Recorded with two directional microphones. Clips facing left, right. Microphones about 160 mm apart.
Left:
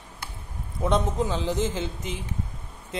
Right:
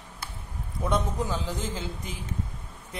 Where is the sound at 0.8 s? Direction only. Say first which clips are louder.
Left 4 dB; 20° left (ahead or behind).